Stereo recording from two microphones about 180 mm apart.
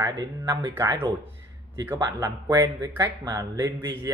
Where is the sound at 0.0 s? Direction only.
20° right (ahead or behind).